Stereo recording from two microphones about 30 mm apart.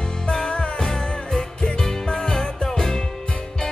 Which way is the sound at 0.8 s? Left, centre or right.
Left.